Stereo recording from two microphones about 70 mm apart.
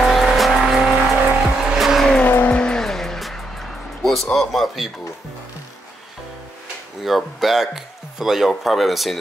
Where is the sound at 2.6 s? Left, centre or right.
Centre.